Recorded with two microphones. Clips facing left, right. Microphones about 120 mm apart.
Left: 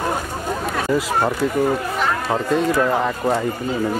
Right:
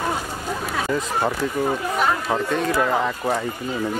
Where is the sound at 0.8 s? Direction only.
5° left (ahead or behind).